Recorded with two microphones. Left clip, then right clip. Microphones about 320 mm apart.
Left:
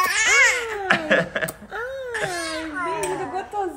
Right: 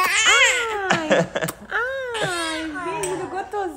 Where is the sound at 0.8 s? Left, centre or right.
Centre.